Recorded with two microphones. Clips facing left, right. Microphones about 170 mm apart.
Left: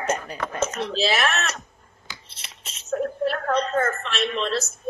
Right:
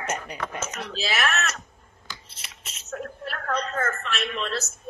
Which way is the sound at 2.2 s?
30° left (ahead or behind).